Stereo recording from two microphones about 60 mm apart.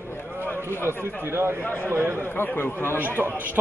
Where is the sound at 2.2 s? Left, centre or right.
Left.